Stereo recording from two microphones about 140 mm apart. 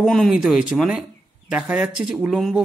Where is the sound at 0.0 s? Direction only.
Centre (ahead or behind).